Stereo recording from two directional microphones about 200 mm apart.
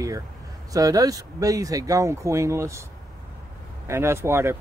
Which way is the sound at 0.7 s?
15° right (ahead or behind).